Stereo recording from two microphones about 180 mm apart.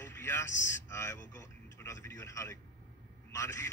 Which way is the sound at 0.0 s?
15° left (ahead or behind).